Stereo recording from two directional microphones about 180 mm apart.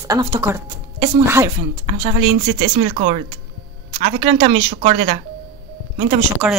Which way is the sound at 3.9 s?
30° right (ahead or behind).